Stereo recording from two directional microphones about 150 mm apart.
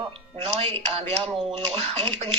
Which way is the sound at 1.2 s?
40° right (ahead or behind).